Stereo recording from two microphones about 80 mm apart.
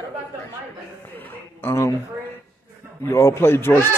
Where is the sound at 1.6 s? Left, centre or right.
Left.